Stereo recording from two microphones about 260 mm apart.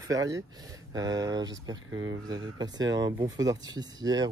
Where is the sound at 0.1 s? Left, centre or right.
Centre.